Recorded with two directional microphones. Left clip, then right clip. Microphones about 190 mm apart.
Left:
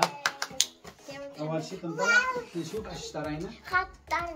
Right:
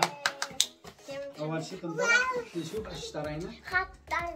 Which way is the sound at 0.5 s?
25° right (ahead or behind).